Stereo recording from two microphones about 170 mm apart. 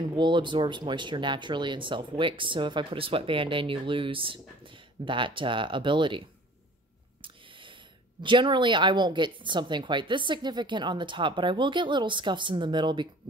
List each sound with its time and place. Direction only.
0.1 s speech: 30° right (ahead or behind)
8.2 s speech: 30° right (ahead or behind)